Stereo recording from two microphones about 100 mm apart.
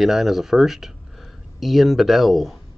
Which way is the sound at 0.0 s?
Centre (ahead or behind).